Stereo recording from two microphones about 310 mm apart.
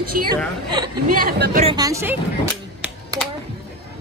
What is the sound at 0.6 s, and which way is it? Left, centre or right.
Speech, centre.